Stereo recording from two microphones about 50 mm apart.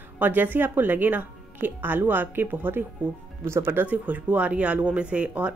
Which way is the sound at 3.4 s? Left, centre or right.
Right.